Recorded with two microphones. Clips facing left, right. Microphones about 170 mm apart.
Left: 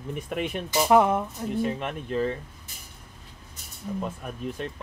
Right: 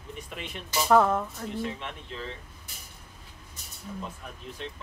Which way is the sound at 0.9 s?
15° left (ahead or behind).